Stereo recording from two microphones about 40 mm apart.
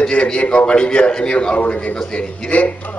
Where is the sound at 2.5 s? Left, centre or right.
Left.